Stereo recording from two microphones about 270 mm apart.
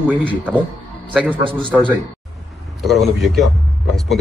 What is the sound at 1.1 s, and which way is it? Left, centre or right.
Speech, centre.